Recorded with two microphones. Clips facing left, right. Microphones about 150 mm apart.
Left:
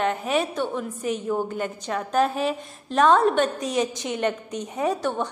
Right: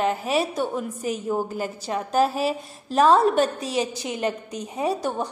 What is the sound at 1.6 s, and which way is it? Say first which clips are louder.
Speech: even; 30° right (ahead or behind).